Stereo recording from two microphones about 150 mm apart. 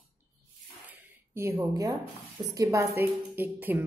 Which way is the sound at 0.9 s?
20° right (ahead or behind).